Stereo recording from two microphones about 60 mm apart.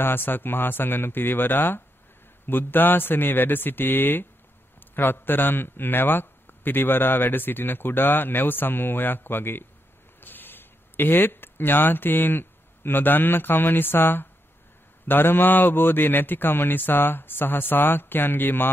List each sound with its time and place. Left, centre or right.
0.0 s speech: left